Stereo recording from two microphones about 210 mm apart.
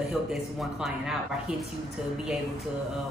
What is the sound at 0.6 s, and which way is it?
Speech, centre (ahead or behind).